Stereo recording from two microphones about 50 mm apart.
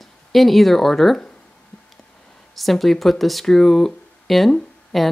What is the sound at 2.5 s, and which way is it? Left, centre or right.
Speech, centre.